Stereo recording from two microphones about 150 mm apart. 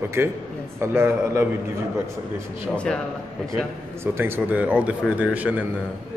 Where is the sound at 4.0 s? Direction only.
15° right (ahead or behind).